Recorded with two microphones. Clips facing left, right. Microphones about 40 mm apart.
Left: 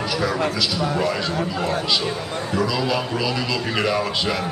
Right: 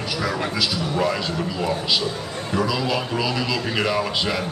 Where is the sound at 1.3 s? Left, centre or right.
Left.